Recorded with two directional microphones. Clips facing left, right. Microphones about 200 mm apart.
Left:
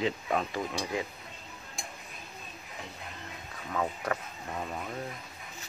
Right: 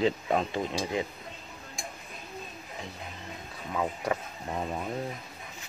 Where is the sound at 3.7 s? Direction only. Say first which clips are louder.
Right 2 dB; 15° right (ahead or behind).